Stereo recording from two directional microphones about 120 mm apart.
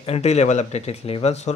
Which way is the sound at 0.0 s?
60° left (ahead or behind).